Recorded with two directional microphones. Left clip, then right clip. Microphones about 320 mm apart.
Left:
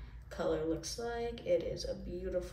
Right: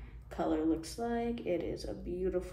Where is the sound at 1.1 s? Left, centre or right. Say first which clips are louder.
Left 2 dB; centre.